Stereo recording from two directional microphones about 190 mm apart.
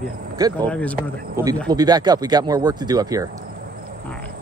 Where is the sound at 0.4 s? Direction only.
20° right (ahead or behind).